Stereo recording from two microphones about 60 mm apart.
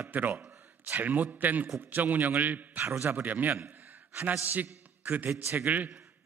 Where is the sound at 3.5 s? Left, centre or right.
Right.